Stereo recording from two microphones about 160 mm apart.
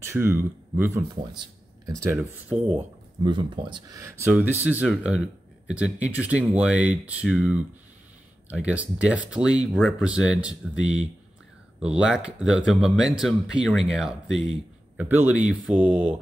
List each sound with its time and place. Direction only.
0.1 s speech: 15° right (ahead or behind)
3.3 s speech: 30° right (ahead or behind)
4.3 s speech: 5° right (ahead or behind)